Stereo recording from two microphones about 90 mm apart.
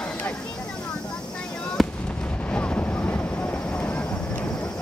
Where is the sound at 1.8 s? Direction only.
Centre (ahead or behind).